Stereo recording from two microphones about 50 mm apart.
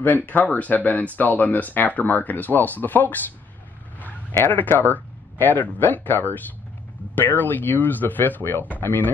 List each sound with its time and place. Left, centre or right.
0.0 s speech: left
4.6 s speech: left